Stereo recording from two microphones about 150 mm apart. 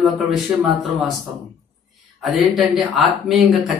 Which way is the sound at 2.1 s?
Centre (ahead or behind).